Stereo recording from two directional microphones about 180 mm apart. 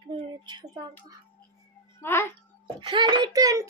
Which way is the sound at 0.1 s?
25° right (ahead or behind).